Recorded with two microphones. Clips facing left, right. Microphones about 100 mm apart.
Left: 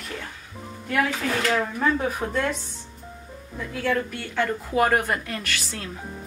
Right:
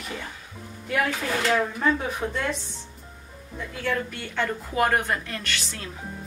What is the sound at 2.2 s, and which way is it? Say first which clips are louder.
Speech: even; 20° left (ahead or behind).